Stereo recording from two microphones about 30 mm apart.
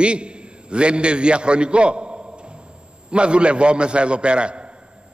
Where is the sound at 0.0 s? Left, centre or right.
Right.